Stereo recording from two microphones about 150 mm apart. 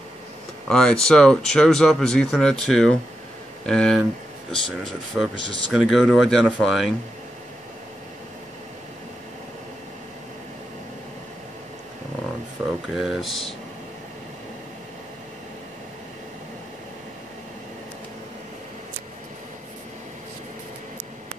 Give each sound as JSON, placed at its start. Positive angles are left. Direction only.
{"t": 0.7, "sound": "speech", "side_deg": 5}
{"t": 12.8, "sound": "speech", "side_deg": -5}